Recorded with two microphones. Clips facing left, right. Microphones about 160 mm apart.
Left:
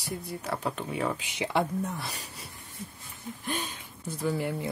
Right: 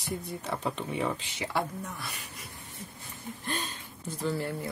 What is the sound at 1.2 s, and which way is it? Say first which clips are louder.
Speech: left 4 dB; 15° left (ahead or behind).